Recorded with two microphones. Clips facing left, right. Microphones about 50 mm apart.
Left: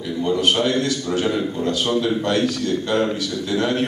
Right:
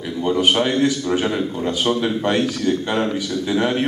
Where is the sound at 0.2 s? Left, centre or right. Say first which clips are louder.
Right 1 dB; centre.